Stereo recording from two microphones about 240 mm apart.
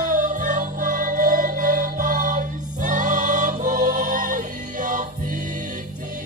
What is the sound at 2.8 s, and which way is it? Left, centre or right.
Music, right.